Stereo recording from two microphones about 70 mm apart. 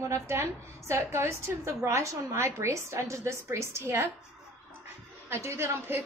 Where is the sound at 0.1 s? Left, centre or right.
Right.